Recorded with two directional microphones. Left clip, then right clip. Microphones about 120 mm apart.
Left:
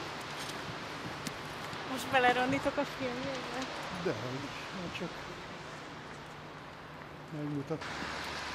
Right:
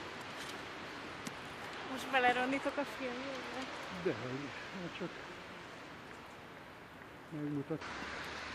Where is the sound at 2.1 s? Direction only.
15° right (ahead or behind).